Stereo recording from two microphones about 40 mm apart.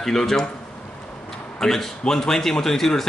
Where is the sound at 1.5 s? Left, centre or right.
Centre.